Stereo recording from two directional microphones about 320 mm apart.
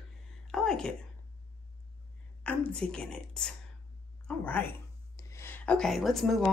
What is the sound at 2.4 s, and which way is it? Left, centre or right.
A woman's voice, centre.